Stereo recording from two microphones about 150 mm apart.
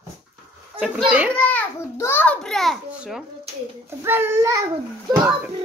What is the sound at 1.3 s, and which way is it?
A child's voice, 10° left (ahead or behind).